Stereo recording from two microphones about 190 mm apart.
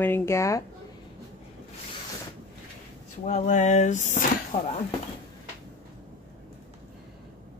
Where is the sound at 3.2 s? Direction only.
35° left (ahead or behind).